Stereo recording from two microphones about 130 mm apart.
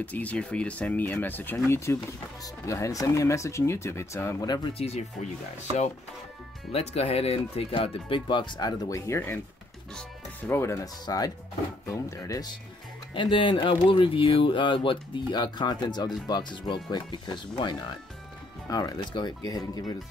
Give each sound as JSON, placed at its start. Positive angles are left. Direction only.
{"t": 0.0, "sound": "speech", "side_deg": 10}
{"t": 4.7, "sound": "speech", "side_deg": 55}
{"t": 6.7, "sound": "speech", "side_deg": 55}
{"t": 13.1, "sound": "speech", "side_deg": 40}